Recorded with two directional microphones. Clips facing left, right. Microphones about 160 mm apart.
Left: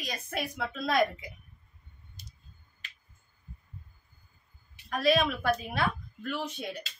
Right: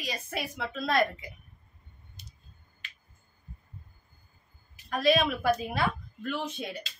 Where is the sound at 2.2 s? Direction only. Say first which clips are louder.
Left 1 dB; 40° left (ahead or behind).